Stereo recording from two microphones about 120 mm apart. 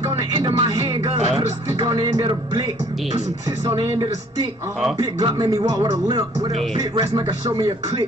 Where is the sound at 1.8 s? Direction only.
30° right (ahead or behind).